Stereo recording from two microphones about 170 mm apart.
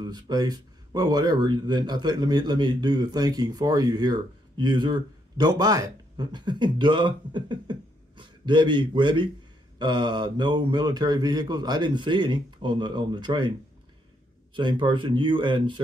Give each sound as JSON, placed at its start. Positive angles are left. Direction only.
{"t": 0.0, "sound": "speech", "side_deg": -25}
{"t": 14.5, "sound": "speech", "side_deg": -30}